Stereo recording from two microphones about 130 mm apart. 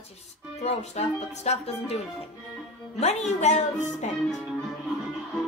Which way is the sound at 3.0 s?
60° left (ahead or behind).